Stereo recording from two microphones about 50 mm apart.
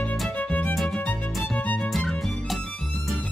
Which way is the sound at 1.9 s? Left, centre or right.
Centre.